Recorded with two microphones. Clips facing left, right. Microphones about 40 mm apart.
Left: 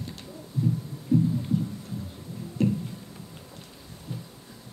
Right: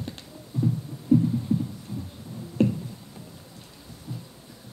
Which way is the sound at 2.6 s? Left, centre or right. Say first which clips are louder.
Right 2 dB; right.